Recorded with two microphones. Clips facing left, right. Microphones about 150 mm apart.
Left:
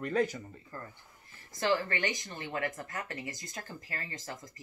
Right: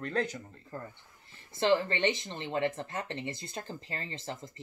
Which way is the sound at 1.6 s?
25° right (ahead or behind).